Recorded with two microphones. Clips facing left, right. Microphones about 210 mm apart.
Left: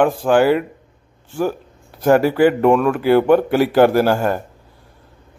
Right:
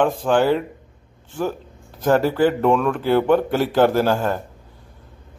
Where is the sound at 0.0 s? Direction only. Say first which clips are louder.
Left 3 dB; 10° left (ahead or behind).